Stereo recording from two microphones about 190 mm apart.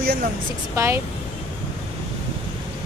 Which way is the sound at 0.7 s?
10° right (ahead or behind).